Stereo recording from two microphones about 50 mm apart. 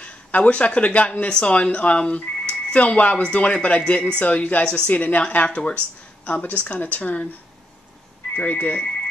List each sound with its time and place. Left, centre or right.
0.0 s a woman's voice: left
8.4 s speech: left